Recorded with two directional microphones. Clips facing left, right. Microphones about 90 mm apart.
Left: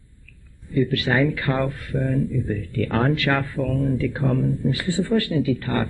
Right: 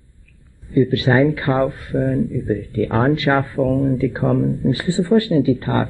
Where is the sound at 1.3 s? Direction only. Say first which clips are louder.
Right 5 dB; 40° right (ahead or behind).